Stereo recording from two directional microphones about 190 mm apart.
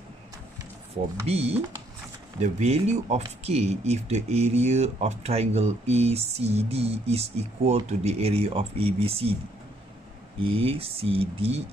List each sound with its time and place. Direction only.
1.2 s speech: 30° right (ahead or behind)
10.4 s speech: 30° right (ahead or behind)